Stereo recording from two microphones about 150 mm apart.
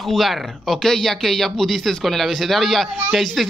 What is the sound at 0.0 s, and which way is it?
Speech, centre (ahead or behind).